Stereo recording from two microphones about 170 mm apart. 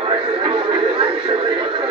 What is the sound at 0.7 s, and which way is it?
Music, 30° right (ahead or behind).